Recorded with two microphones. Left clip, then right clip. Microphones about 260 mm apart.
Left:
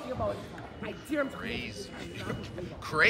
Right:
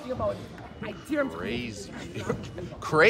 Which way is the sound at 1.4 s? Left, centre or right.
Centre.